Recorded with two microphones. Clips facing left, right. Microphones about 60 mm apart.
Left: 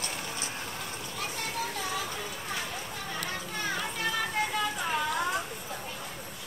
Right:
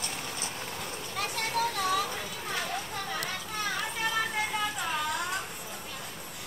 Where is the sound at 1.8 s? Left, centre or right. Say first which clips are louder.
Right 5 dB; right.